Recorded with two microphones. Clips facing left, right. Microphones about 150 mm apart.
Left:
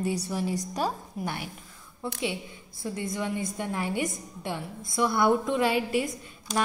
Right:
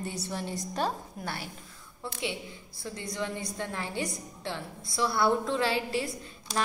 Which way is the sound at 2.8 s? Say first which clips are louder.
Left 4 dB; 25° left (ahead or behind).